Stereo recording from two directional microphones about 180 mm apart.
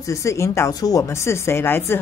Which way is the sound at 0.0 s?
15° left (ahead or behind).